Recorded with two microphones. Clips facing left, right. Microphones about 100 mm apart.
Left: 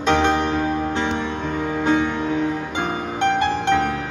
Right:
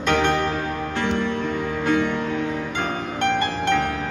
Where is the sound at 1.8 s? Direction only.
20° left (ahead or behind).